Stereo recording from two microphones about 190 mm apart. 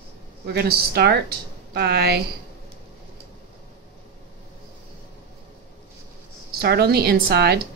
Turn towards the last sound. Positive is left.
turn(degrees=-55)  # may be behind; listen again after turning